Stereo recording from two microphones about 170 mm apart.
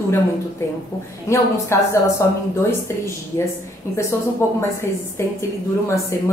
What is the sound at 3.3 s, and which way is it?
Speech, 20° left (ahead or behind).